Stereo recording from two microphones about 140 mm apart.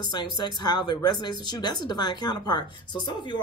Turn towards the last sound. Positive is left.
turn(degrees=30)  # may be behind; listen again after turning